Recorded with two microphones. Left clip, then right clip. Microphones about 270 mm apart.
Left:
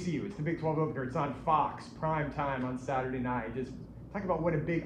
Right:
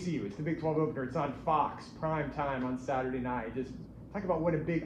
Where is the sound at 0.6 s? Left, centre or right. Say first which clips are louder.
Right 1 dB; left.